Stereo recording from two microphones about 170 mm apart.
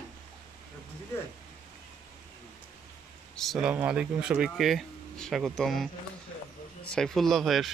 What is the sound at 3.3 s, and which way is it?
Speech, centre (ahead or behind).